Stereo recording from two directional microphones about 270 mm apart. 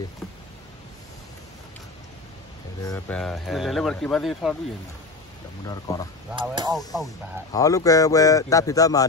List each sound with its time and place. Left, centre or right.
2.8 s speech: centre
3.2 s speech: centre
5.9 s speech: centre
6.4 s speech: centre
7.5 s speech: centre